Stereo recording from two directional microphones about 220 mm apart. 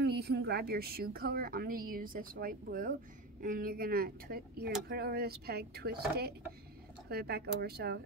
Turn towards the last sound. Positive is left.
turn(degrees=-45)  # may be behind; listen again after turning